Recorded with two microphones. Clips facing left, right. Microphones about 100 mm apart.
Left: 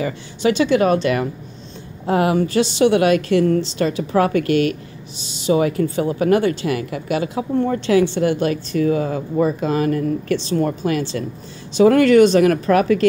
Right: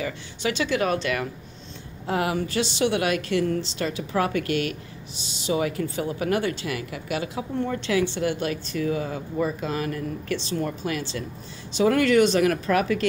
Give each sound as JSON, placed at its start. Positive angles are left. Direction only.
{"t": 0.0, "sound": "speech", "side_deg": 35}
{"t": 2.0, "sound": "speech", "side_deg": 45}
{"t": 10.3, "sound": "speech", "side_deg": 65}